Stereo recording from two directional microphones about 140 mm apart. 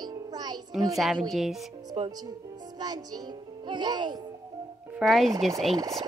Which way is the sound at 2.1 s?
25° right (ahead or behind).